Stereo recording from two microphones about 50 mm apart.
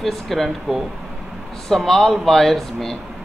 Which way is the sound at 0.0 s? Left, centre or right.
Centre.